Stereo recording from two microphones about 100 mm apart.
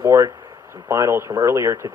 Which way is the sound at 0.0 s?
30° right (ahead or behind).